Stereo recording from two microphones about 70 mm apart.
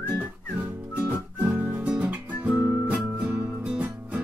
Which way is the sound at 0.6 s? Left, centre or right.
Right.